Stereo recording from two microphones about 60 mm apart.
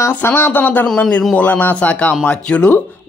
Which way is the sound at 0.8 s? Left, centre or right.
Centre.